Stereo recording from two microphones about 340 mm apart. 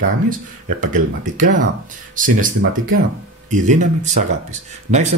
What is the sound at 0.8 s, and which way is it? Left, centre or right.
Speech, right.